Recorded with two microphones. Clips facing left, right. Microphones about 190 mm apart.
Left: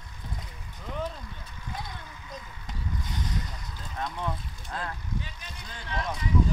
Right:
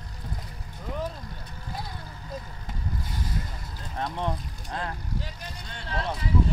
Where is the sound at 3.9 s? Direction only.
35° right (ahead or behind).